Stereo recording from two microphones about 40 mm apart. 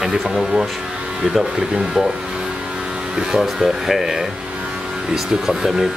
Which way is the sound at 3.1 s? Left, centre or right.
Centre.